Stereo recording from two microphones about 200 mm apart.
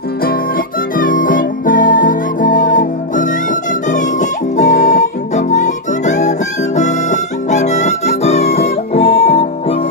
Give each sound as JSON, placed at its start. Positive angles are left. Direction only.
{"t": 0.9, "sound": "music", "side_deg": 45}